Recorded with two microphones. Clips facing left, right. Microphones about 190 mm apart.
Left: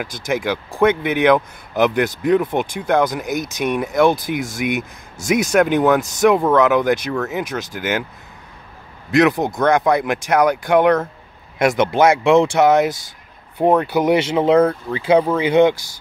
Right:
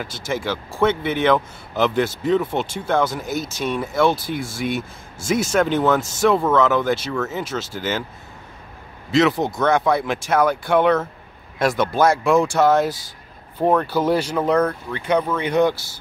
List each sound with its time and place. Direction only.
0.0 s speech: 15° left (ahead or behind)
9.1 s speech: 15° left (ahead or behind)
15.5 s speech: 20° left (ahead or behind)